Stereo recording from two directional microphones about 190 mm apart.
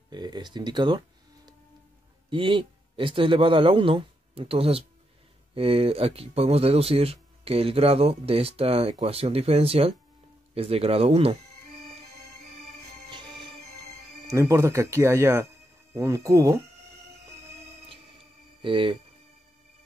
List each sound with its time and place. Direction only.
0.1 s a man's voice: 20° right (ahead or behind)
14.3 s speech: 15° right (ahead or behind)
17.8 s music: 25° right (ahead or behind)